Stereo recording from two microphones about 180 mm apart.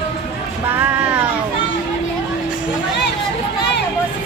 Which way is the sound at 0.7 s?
10° right (ahead or behind).